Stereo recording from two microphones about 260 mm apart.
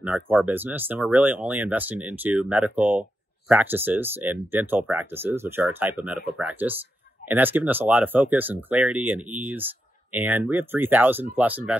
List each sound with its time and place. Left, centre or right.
0.0 s speech: centre